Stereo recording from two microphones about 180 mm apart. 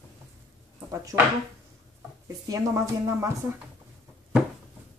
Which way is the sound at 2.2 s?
20° right (ahead or behind).